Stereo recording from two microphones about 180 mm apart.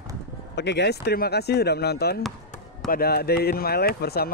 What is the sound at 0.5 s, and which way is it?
Speech, 70° left (ahead or behind).